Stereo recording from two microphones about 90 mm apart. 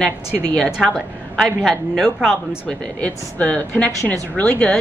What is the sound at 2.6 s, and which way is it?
A woman's voice, 15° left (ahead or behind).